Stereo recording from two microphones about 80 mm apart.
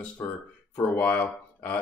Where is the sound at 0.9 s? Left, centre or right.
Centre.